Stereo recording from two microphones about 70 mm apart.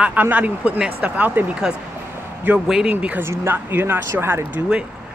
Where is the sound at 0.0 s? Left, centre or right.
Right.